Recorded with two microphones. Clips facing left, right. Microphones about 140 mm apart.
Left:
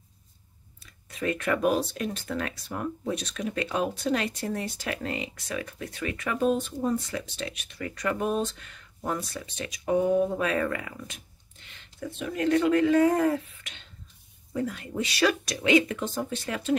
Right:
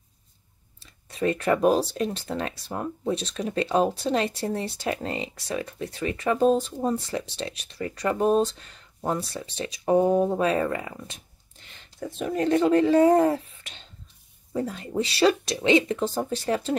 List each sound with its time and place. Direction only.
0.7 s speech: 30° right (ahead or behind)